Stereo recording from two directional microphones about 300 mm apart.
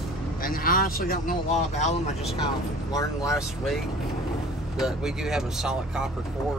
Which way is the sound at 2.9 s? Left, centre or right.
Centre.